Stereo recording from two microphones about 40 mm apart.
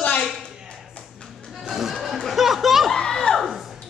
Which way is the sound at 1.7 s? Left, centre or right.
Centre.